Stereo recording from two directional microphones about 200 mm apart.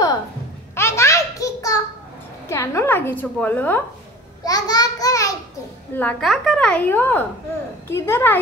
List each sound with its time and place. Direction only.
0.7 s a sound: 15° left (ahead or behind)
2.4 s a woman's voice: 15° left (ahead or behind)
5.9 s a woman's voice: 5° left (ahead or behind)